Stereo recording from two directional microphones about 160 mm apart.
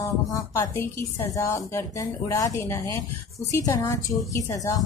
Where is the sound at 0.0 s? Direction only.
20° left (ahead or behind).